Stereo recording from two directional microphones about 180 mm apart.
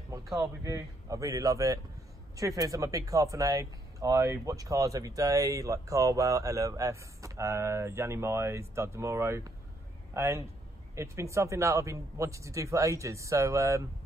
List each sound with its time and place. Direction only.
0.4 s speech: 15° right (ahead or behind)